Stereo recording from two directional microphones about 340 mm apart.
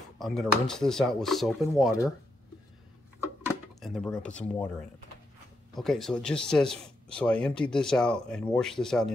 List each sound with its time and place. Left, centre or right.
0.2 s speech: centre
3.8 s speech: centre